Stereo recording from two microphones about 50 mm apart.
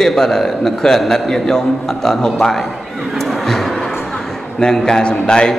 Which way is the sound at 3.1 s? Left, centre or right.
Centre.